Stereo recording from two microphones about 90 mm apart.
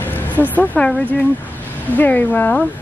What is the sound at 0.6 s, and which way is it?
Speech, 10° left (ahead or behind).